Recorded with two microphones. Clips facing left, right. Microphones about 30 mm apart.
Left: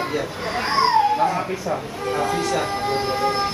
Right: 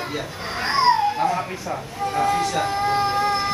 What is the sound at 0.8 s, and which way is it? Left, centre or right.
Dog, centre.